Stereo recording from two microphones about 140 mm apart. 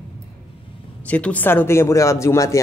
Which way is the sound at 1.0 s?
10° left (ahead or behind).